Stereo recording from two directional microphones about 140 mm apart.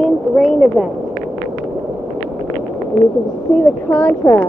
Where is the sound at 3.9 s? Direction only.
15° left (ahead or behind).